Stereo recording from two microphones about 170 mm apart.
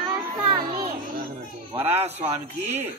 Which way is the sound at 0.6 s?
60° right (ahead or behind).